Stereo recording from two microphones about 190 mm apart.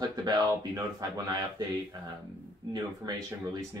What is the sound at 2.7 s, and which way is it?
Speech, 20° right (ahead or behind).